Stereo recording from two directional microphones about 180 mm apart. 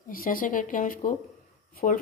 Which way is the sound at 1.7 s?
50° left (ahead or behind).